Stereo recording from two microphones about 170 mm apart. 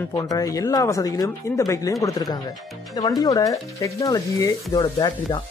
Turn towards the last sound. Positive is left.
turn(degrees=25)  # may be behind; listen again after turning